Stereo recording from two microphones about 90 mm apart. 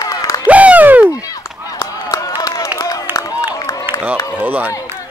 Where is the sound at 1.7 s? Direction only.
40° left (ahead or behind).